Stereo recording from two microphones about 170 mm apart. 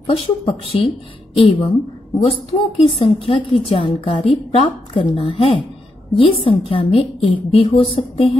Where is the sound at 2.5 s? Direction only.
35° left (ahead or behind).